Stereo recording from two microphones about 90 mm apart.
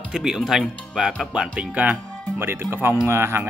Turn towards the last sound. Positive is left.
turn(degrees=-25)  # may be behind; listen again after turning